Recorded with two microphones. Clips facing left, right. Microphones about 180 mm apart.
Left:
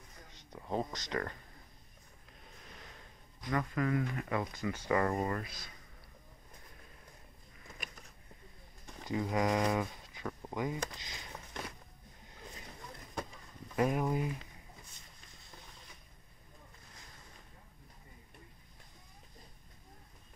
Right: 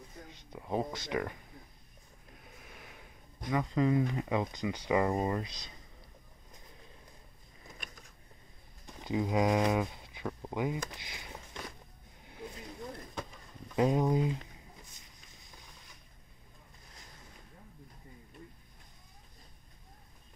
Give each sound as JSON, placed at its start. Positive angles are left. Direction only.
{"t": 0.5, "sound": "speech", "side_deg": -15}
{"t": 2.3, "sound": "a sound", "side_deg": -5}
{"t": 3.4, "sound": "speech", "side_deg": -15}
{"t": 9.0, "sound": "speech", "side_deg": -15}
{"t": 13.7, "sound": "speech", "side_deg": -20}